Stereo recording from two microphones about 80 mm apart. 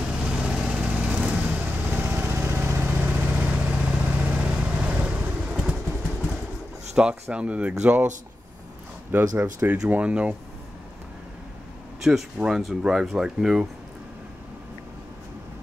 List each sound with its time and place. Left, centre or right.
0.0 s vehicle: centre
7.0 s speech: centre
9.1 s speech: right
12.0 s speech: centre